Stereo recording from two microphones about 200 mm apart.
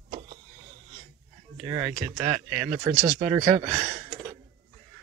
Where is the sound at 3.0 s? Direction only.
35° right (ahead or behind).